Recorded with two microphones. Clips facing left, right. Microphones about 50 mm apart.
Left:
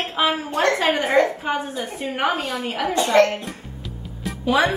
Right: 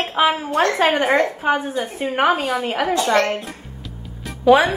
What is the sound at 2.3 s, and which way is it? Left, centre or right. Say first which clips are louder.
Speech: right 4 dB; centre.